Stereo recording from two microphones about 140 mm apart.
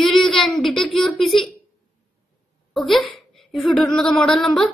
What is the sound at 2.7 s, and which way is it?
Speech, centre (ahead or behind).